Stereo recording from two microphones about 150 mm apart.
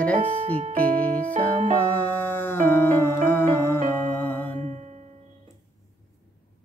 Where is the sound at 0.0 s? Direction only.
10° left (ahead or behind).